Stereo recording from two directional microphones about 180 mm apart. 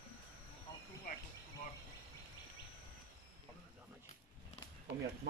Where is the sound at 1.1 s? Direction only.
45° left (ahead or behind).